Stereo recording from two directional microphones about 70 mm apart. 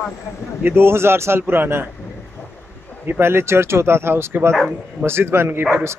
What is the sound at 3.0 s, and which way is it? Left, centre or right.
Speech, right.